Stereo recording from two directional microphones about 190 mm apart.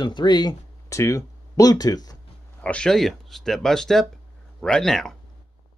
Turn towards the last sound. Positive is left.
turn(degrees=0)  # may be behind; listen again after turning